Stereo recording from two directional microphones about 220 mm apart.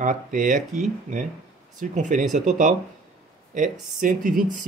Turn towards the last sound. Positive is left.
turn(degrees=-35)  # may be behind; listen again after turning